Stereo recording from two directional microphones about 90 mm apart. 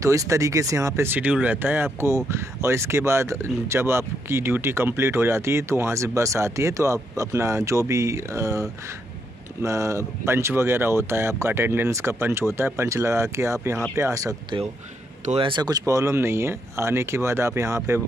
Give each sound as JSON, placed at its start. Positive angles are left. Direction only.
{"t": 0.0, "sound": "speech", "side_deg": -35}
{"t": 1.1, "sound": "speech", "side_deg": -15}
{"t": 14.5, "sound": "speech", "side_deg": -70}
{"t": 15.8, "sound": "speech", "side_deg": -35}